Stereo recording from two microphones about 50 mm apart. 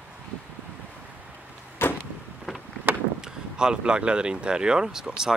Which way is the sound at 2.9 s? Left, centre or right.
Right.